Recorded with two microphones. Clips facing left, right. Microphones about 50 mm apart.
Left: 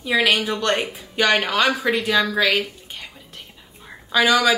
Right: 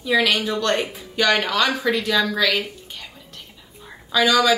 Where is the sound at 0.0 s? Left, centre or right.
Left.